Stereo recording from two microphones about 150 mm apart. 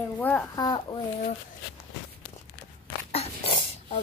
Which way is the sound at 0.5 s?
30° left (ahead or behind).